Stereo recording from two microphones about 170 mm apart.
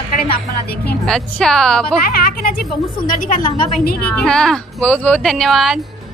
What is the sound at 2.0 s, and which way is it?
A woman's voice, 60° left (ahead or behind).